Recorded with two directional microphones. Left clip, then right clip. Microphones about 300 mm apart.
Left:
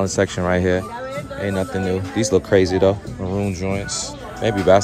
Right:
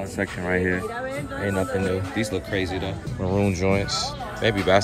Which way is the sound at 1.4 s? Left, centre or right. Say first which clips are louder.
Left 2 dB; centre.